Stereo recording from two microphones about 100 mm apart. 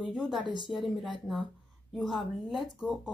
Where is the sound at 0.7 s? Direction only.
Centre (ahead or behind).